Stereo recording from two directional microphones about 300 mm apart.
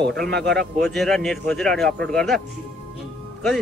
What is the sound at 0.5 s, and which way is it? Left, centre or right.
Speech, centre.